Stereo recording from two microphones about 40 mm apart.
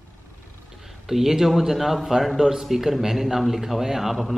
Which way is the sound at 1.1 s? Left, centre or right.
Centre.